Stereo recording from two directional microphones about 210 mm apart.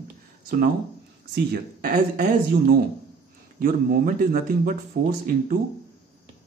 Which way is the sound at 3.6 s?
40° right (ahead or behind).